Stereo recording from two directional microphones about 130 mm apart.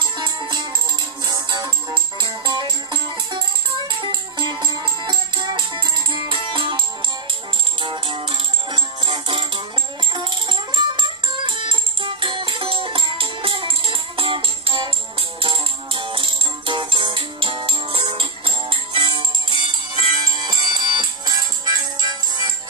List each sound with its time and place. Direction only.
0.0 s music: 35° right (ahead or behind)
7.8 s music: 40° right (ahead or behind)